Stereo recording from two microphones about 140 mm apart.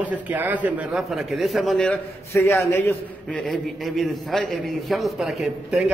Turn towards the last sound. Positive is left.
turn(degrees=-5)  # may be behind; listen again after turning